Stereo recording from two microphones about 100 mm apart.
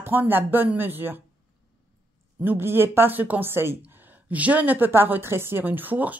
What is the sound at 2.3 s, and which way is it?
Speech, 20° right (ahead or behind).